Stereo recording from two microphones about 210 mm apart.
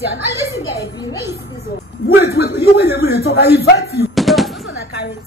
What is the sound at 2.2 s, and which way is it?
A woman's voice, 45° left (ahead or behind).